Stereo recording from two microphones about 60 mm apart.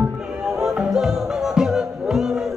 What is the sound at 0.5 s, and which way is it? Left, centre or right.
Music, centre.